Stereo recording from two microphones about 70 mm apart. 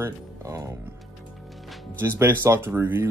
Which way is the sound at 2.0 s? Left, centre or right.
Right.